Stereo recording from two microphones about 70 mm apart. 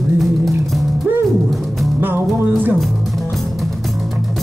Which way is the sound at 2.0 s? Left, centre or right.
Right.